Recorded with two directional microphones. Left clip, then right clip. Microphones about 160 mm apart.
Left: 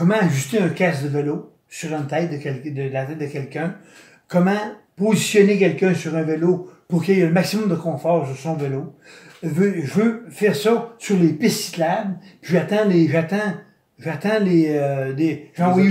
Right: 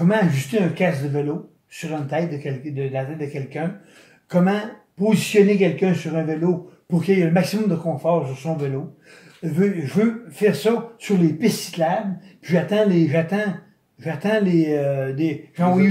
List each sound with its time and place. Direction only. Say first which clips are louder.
0.0 s speech: left 1 dB; 15° right (ahead or behind)